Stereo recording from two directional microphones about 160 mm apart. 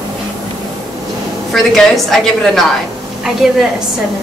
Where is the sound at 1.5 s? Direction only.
Centre (ahead or behind).